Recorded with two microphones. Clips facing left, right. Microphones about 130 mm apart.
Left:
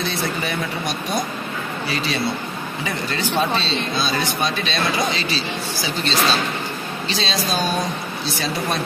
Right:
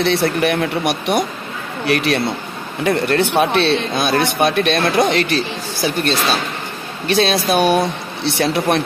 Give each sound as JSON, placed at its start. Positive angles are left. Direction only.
{"t": 0.0, "sound": "speech", "side_deg": -65}